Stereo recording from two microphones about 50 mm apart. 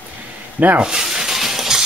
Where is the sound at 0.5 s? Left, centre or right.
Right.